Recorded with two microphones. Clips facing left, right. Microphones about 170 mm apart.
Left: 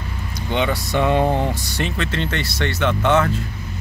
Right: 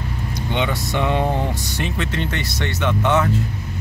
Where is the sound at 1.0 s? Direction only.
15° left (ahead or behind).